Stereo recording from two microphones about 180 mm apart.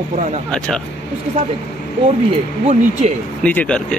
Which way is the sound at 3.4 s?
5° left (ahead or behind).